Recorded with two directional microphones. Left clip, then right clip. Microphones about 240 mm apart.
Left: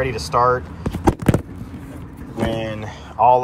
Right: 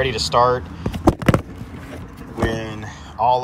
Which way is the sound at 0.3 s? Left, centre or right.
Centre.